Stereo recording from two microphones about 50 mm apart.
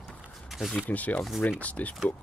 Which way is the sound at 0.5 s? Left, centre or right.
Centre.